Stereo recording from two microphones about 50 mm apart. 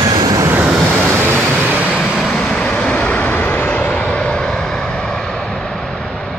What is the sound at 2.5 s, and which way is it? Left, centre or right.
Vehicle, left.